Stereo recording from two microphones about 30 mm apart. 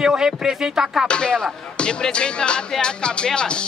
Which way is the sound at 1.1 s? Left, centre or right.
Left.